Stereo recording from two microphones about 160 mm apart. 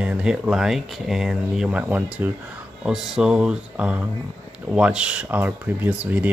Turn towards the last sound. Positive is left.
turn(degrees=-10)  # may be behind; listen again after turning